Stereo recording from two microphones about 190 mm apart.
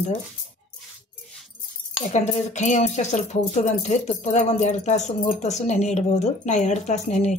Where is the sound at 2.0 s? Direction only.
35° left (ahead or behind).